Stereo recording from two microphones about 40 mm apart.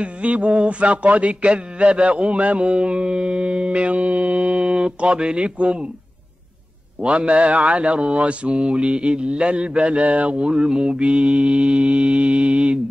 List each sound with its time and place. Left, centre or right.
0.0 s a man's voice: right
7.0 s speech: right